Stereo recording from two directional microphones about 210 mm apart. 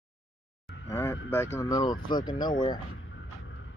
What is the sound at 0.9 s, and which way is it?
Speech, 10° left (ahead or behind).